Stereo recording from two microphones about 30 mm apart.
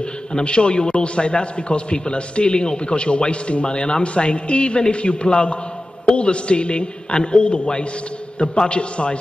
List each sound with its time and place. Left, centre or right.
0.3 s a man's voice: left